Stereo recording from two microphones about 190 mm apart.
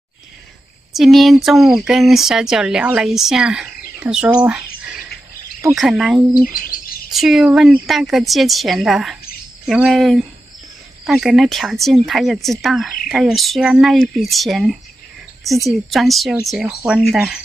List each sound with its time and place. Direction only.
0.9 s speech: centre (ahead or behind)
6.5 s bird: 50° left (ahead or behind)
7.1 s speech: centre (ahead or behind)